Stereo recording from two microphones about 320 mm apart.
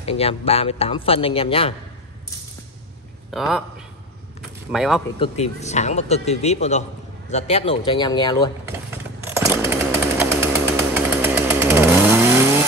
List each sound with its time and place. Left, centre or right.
0.0 s speech: centre
3.3 s a man's voice: centre
4.7 s a man's voice: centre
5.2 s a man's voice: centre
9.2 s chainsaw: centre